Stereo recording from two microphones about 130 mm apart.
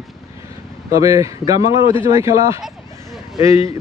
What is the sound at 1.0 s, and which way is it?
Speech, 25° right (ahead or behind).